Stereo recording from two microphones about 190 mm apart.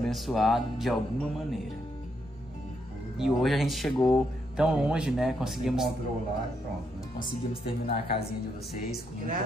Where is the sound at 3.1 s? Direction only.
Centre (ahead or behind).